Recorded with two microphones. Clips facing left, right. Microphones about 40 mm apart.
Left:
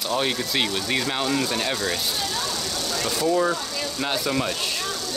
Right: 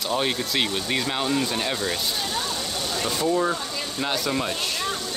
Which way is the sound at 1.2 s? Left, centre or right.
Centre.